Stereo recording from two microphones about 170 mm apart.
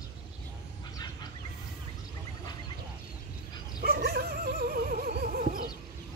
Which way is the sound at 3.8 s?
65° right (ahead or behind).